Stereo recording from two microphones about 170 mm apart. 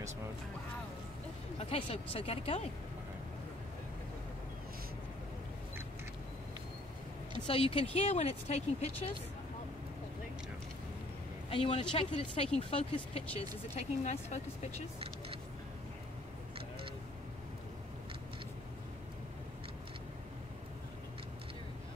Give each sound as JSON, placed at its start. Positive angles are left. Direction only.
{"t": 1.6, "sound": "speech", "side_deg": 35}
{"t": 7.4, "sound": "speech", "side_deg": 35}
{"t": 11.5, "sound": "speech", "side_deg": 35}